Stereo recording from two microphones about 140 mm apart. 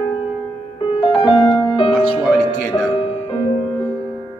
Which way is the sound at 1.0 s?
35° left (ahead or behind).